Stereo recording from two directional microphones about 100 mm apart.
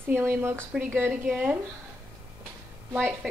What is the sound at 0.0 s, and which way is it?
A woman's voice, 20° right (ahead or behind).